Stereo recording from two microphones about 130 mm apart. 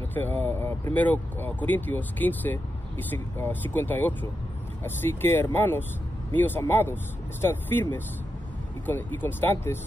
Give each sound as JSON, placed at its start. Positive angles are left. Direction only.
{"t": 0.1, "sound": "speech", "side_deg": 15}
{"t": 8.8, "sound": "speech", "side_deg": 15}